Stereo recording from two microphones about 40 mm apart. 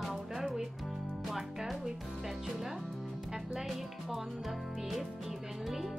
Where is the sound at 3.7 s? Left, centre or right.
Centre.